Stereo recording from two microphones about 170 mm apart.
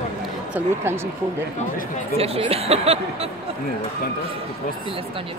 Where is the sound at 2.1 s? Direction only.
35° right (ahead or behind).